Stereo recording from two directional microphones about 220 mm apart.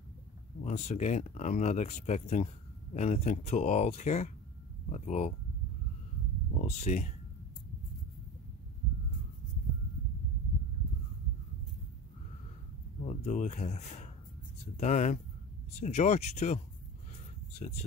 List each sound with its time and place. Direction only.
0.7 s speech: 30° left (ahead or behind)
6.6 s speech: 30° left (ahead or behind)
13.0 s speech: 35° left (ahead or behind)